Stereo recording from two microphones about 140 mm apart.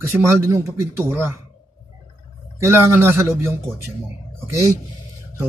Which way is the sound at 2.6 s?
20° right (ahead or behind).